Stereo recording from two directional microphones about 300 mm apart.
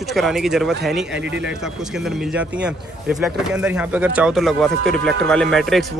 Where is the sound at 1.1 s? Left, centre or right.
Right.